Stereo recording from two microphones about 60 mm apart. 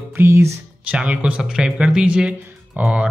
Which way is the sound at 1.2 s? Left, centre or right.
Centre.